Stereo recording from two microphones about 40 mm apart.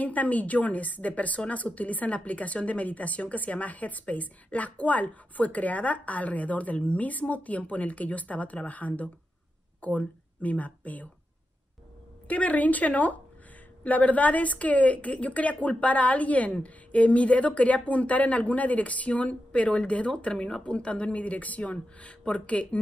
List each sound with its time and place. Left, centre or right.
0.0 s a woman's voice: left
12.3 s a woman's voice: left